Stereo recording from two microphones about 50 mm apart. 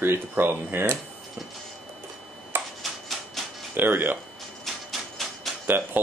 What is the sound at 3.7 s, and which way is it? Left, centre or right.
Speech, right.